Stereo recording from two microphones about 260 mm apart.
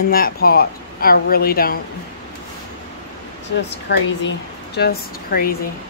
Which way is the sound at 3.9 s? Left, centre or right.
Left.